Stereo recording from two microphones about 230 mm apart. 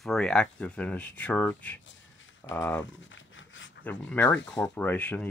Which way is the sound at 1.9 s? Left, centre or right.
Left.